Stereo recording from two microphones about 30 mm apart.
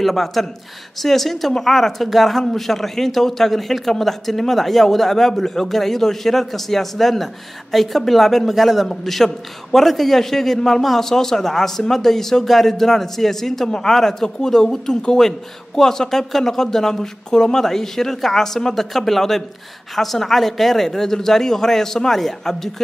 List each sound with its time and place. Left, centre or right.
0.0 s a man's voice: centre
5.4 s a man's voice: centre